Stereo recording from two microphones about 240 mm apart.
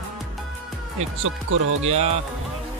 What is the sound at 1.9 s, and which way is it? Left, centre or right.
Speech, right.